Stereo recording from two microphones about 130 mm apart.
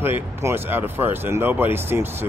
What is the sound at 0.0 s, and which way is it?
Speech, 20° right (ahead or behind).